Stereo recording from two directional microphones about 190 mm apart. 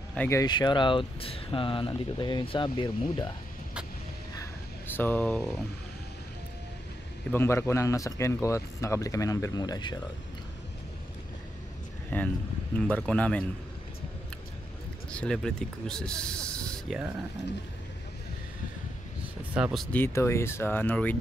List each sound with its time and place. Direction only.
0.1 s speech: 5° left (ahead or behind)
0.4 s speech: 20° left (ahead or behind)
4.9 s speech: 10° left (ahead or behind)
7.2 s speech: 10° left (ahead or behind)
12.1 s speech: 10° left (ahead or behind)
15.0 s speech: 5° left (ahead or behind)
19.5 s speech: 5° right (ahead or behind)